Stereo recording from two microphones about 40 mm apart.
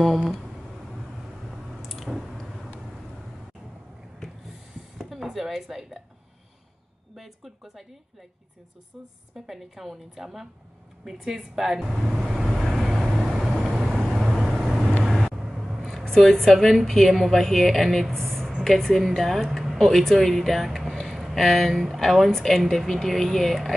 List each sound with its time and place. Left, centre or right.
0.0 s speech: centre
1.8 s a sound: centre
2.3 s vehicle: centre
5.2 s a sound: centre
7.2 s speech: centre
9.5 s a woman's voice: centre
12.1 s vehicle: centre
14.3 s vehicle: centre
15.3 s a sound: centre
16.0 s a woman's voice: centre
19.8 s speech: centre
21.1 s a sound: centre
21.8 s speech: centre